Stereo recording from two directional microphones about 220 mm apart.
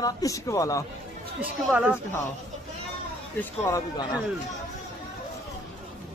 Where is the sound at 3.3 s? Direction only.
15° left (ahead or behind).